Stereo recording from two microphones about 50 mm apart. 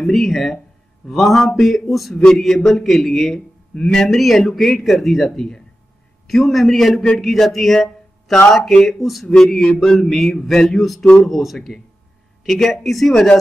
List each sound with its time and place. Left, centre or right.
0.0 s a man's voice: centre
11.1 s a man's voice: centre